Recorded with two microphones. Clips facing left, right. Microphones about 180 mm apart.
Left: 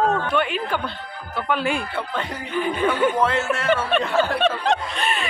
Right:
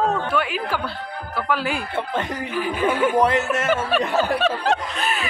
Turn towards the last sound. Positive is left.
turn(degrees=-5)  # may be behind; listen again after turning